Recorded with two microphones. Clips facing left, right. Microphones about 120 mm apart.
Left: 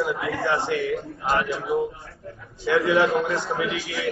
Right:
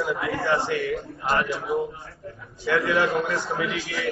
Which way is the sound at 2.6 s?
15° left (ahead or behind).